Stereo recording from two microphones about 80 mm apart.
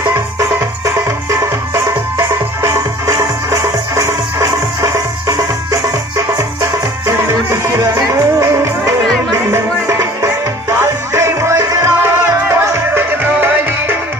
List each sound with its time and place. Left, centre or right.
1.7 s music: right
7.1 s music: right